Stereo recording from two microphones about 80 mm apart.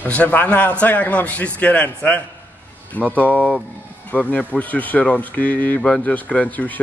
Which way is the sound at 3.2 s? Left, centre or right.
Centre.